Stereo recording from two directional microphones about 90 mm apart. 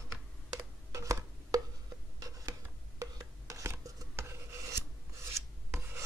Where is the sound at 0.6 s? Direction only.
40° right (ahead or behind).